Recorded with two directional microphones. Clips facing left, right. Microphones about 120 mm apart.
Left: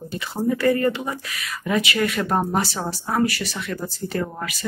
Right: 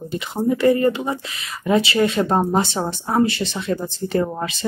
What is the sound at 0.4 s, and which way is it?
Speech, 25° right (ahead or behind).